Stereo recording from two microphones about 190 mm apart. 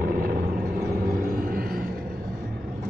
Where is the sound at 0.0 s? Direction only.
50° right (ahead or behind).